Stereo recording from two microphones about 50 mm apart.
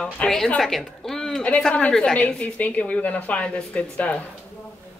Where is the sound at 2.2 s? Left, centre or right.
Left.